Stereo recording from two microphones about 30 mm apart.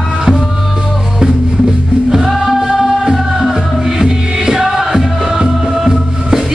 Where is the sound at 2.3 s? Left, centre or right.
Centre.